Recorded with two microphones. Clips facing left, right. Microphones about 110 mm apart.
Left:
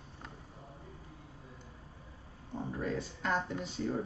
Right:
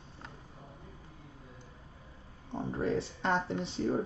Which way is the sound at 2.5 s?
30° right (ahead or behind).